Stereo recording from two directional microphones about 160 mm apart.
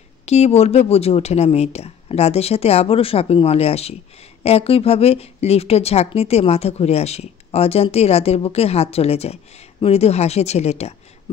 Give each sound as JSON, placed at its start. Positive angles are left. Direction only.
{"t": 0.2, "sound": "speech", "side_deg": 40}